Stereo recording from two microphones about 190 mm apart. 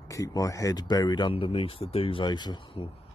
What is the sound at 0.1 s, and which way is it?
Speech, 15° left (ahead or behind).